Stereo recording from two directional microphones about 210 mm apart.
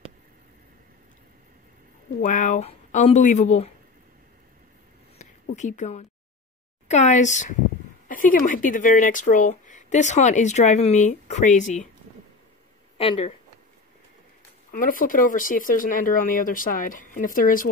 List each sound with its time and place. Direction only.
2.2 s speech: 35° left (ahead or behind)
5.6 s speech: 35° left (ahead or behind)
12.9 s speech: 25° left (ahead or behind)
14.7 s speech: 40° left (ahead or behind)